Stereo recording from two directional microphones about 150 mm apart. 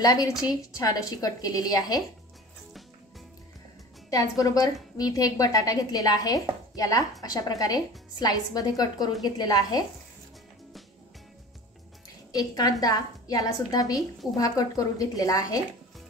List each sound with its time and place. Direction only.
0.0 s speech: 25° left (ahead or behind)
4.1 s speech: 25° left (ahead or behind)
12.3 s a woman's voice: 25° left (ahead or behind)